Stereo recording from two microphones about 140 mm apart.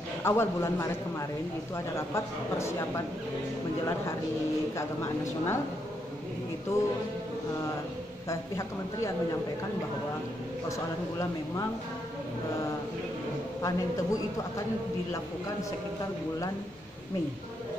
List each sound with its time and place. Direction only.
0.2 s speech: 20° left (ahead or behind)
2.0 s speech: 20° left (ahead or behind)
4.7 s speech: 20° left (ahead or behind)
6.7 s speech: 20° left (ahead or behind)
8.3 s speech: 20° left (ahead or behind)
13.6 s speech: 25° left (ahead or behind)